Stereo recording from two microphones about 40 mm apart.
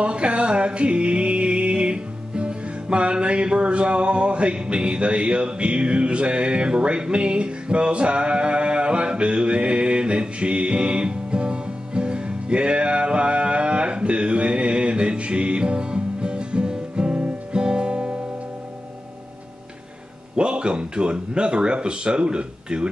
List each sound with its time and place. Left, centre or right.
0.0 s music: right
20.3 s speech: right